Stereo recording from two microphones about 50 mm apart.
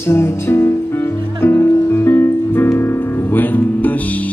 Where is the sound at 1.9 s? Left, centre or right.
Left.